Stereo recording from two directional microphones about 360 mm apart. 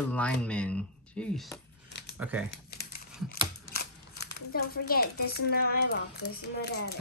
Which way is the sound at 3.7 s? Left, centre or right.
Left.